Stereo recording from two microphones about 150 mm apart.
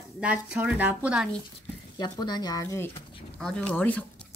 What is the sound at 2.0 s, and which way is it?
Speech, 30° left (ahead or behind).